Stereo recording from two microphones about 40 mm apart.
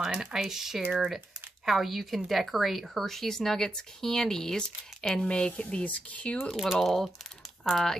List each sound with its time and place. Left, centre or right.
0.0 s a woman's voice: centre; by 6.3 s left
6.5 s a woman's voice: centre